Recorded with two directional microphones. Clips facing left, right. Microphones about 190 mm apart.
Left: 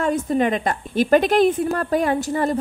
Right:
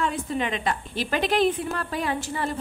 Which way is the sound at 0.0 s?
45° left (ahead or behind).